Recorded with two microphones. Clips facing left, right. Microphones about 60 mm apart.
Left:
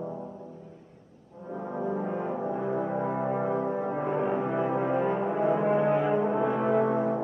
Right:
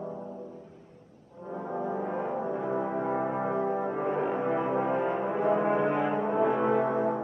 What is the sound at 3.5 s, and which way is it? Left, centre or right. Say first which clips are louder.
Music: even; right.